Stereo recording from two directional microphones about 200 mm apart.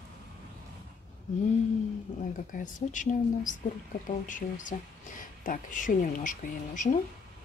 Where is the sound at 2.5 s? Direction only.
40° left (ahead or behind).